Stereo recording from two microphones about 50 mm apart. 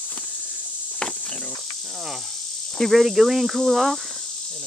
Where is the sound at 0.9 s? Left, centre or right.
Centre.